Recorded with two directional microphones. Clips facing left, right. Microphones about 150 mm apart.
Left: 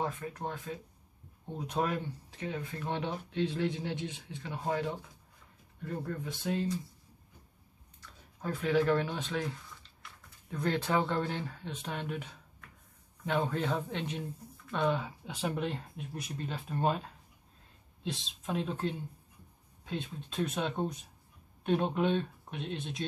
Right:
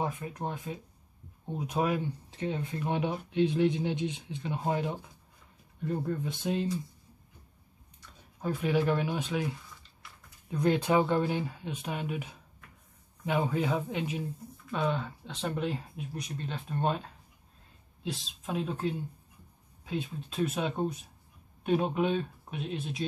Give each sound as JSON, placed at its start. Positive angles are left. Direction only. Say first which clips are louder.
{"t": 0.0, "sound": "speech", "louder": "right 2 dB", "side_deg": -15}
{"t": 2.3, "sound": "speech", "louder": "right 4 dB", "side_deg": -25}
{"t": 8.4, "sound": "speech", "louder": "right 1 dB", "side_deg": -15}